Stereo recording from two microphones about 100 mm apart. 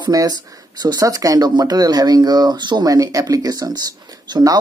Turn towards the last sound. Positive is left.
turn(degrees=-40)  # may be behind; listen again after turning